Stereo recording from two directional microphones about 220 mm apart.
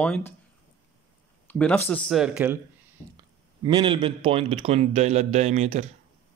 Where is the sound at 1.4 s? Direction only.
5° left (ahead or behind).